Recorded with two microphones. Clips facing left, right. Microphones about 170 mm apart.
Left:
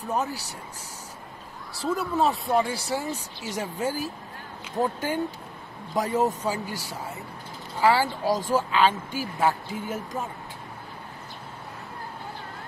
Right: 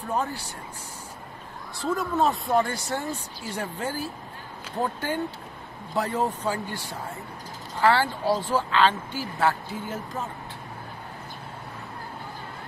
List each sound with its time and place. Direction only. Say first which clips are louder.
0.1 s speech: even; 10° left (ahead or behind)
1.9 s speech: even; centre (ahead or behind)
3.5 s speech: left 2 dB; 10° left (ahead or behind)
6.7 s speech: even; 35° left (ahead or behind)
7.8 s speech: even; 10° left (ahead or behind)